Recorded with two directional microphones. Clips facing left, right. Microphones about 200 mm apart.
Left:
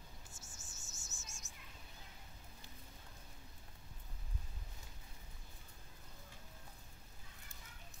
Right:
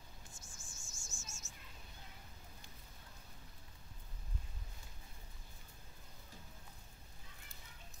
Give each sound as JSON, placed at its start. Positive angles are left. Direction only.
{"t": 0.4, "sound": "cricket", "side_deg": 20}